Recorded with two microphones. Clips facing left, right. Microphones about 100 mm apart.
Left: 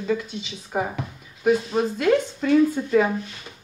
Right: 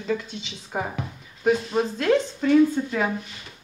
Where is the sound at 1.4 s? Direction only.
5° left (ahead or behind).